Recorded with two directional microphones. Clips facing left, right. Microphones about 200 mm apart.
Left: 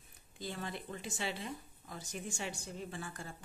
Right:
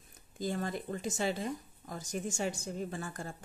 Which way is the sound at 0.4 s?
45° right (ahead or behind).